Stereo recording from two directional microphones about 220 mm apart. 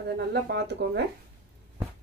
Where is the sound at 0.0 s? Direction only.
50° right (ahead or behind).